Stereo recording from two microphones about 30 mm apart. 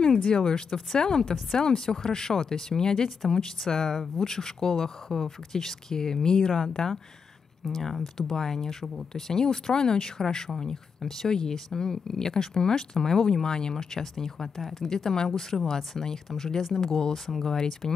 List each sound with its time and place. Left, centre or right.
0.0 s speech: left
6.5 s speech: centre
7.8 s speech: centre
9.3 s speech: centre
11.0 s speech: centre
11.2 s speech: left
13.7 s speech: centre